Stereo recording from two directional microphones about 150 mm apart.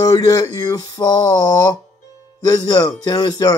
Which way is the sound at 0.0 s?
25° left (ahead or behind).